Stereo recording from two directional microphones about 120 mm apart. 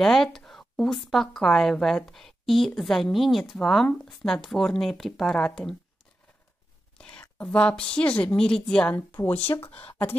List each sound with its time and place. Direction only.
0.0 s a woman's voice: 5° left (ahead or behind)
7.0 s a woman's voice: 10° left (ahead or behind)
8.9 s speech: 15° left (ahead or behind)